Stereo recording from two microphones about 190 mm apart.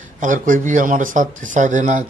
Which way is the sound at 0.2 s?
45° right (ahead or behind).